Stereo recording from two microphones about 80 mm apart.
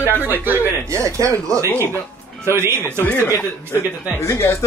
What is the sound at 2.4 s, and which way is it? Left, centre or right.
Speech, right.